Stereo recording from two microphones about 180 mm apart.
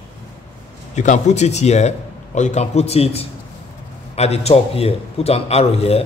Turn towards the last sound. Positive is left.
turn(degrees=35)  # may be behind; listen again after turning